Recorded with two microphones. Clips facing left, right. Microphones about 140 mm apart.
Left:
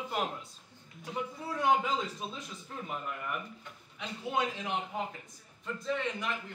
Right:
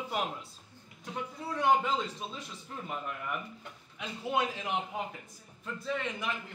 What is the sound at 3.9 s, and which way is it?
A man's voice, 5° right (ahead or behind).